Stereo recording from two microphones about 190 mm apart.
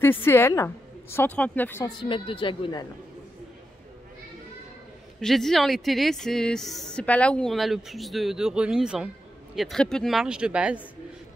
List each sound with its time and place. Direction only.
0.0 s speech: 10° left (ahead or behind)
2.0 s speech: 25° left (ahead or behind)
5.2 s a woman's voice: centre (ahead or behind)